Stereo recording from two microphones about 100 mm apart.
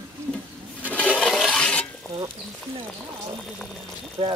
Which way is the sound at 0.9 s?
10° left (ahead or behind).